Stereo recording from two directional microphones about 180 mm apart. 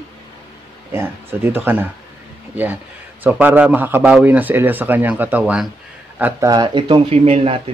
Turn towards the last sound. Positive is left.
turn(degrees=-30)  # may be behind; listen again after turning